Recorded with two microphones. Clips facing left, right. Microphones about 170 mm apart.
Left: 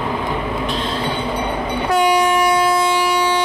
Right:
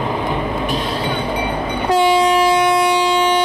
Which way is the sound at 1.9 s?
25° right (ahead or behind).